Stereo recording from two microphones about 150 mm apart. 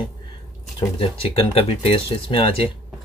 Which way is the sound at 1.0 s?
40° left (ahead or behind).